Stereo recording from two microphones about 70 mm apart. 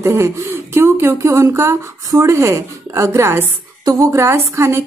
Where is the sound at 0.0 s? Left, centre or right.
Right.